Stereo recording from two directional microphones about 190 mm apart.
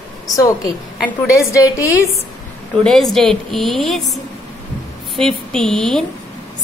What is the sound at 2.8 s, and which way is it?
A woman's voice, centre (ahead or behind).